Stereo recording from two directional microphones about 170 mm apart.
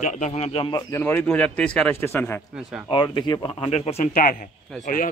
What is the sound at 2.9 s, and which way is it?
Speech, 25° left (ahead or behind).